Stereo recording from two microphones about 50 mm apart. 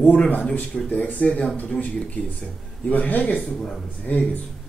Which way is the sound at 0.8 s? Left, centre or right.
Left.